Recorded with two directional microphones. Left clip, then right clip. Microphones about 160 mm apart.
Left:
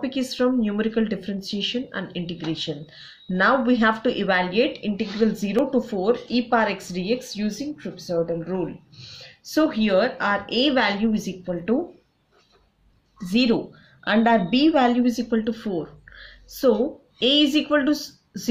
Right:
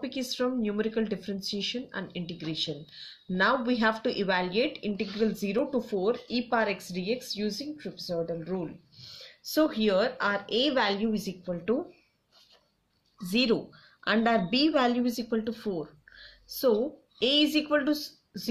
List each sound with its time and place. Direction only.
0.0 s speech: 25° right (ahead or behind)
9.0 s speech: 35° right (ahead or behind)
13.3 s a woman's voice: 40° right (ahead or behind)